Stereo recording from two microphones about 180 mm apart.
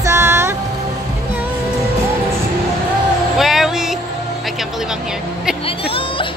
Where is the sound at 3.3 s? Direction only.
Centre (ahead or behind).